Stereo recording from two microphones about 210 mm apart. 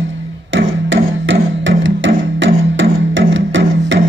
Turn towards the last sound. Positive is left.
turn(degrees=-60)  # may be behind; listen again after turning